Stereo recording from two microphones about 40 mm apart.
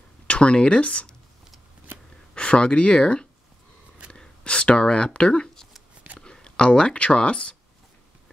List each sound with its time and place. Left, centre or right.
0.3 s speech: left
2.3 s speech: left
4.1 s a sound: left
6.2 s speech: left